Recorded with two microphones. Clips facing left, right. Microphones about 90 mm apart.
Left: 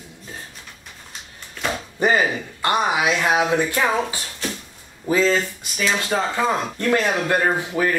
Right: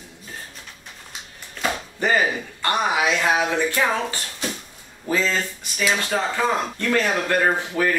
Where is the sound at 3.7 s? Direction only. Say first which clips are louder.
Left 1 dB; 15° left (ahead or behind).